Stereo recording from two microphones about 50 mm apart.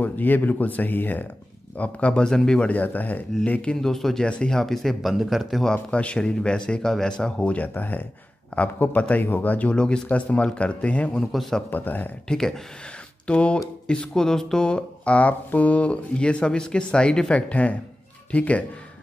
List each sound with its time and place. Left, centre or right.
0.0 s speech: left
1.8 s speech: left
2.2 s a man's voice: centre
2.6 s speech: left
3.7 s a man's voice: centre
5.7 s a man's voice: left
7.5 s speech: left
9.1 s speech: left
9.7 s speech: centre
10.0 s speech: left
11.1 s a man's voice: centre
11.7 s speech: left
12.3 s a man's voice: centre
13.3 s speech: left